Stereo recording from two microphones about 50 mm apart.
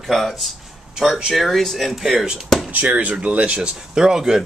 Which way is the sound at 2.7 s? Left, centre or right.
Right.